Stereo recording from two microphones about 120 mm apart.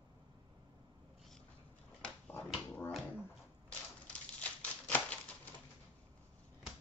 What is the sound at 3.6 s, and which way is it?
Typewriter, 10° left (ahead or behind).